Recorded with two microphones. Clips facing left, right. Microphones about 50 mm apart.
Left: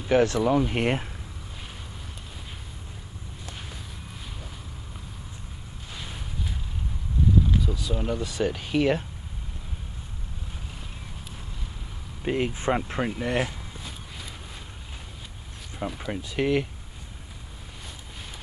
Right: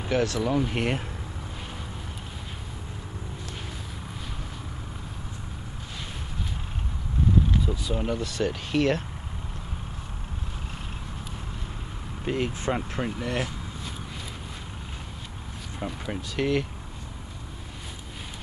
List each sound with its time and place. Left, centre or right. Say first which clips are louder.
0.1 s speech: left 5 dB; left
0.4 s speech: left 3 dB; centre
7.5 s speech: even; centre
8.2 s speech: left 1 dB; centre
12.3 s speech: left 2 dB; centre
15.8 s speech: left 2 dB; centre
16.2 s speech: left 1 dB; centre